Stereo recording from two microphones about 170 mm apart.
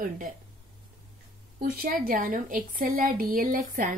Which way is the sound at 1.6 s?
55° right (ahead or behind).